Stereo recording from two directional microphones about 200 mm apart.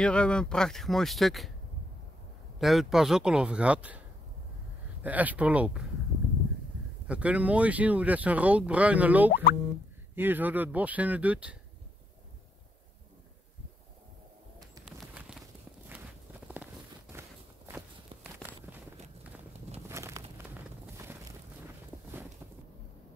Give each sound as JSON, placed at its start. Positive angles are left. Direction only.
{"t": 0.0, "sound": "speech", "side_deg": 5}
{"t": 2.6, "sound": "speech", "side_deg": 0}
{"t": 5.0, "sound": "speech", "side_deg": -10}
{"t": 7.1, "sound": "speech", "side_deg": -5}
{"t": 9.3, "sound": "speech", "side_deg": 50}
{"t": 10.1, "sound": "speech", "side_deg": -10}
{"t": 14.9, "sound": "clip-clop", "side_deg": -5}
{"t": 17.1, "sound": "walk", "side_deg": -15}
{"t": 19.9, "sound": "a sound", "side_deg": -15}